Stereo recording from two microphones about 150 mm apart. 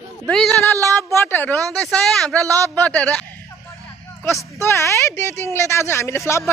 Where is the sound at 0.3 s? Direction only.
Centre (ahead or behind).